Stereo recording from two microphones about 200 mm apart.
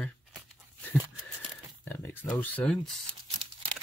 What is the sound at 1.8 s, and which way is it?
Speech, 10° left (ahead or behind).